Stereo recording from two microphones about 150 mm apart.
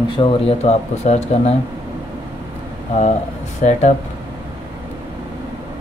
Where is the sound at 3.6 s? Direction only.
55° left (ahead or behind).